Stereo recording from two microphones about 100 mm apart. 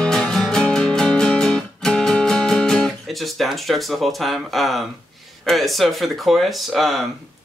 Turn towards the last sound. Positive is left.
turn(degrees=0)  # may be behind; listen again after turning